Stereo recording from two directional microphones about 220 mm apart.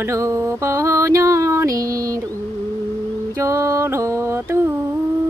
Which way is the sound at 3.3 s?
15° right (ahead or behind).